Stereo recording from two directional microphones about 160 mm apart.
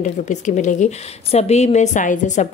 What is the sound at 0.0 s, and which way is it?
A woman's voice, 50° left (ahead or behind).